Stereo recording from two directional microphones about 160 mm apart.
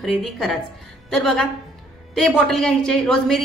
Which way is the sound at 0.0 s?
Centre (ahead or behind).